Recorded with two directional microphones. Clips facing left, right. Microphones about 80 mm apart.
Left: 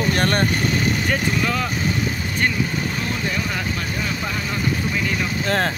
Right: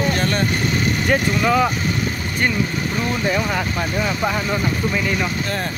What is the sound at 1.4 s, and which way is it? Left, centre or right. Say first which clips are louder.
Speech: right 6 dB; centre.